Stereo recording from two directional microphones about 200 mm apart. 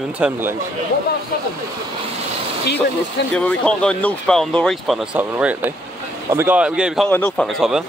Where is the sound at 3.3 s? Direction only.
5° left (ahead or behind).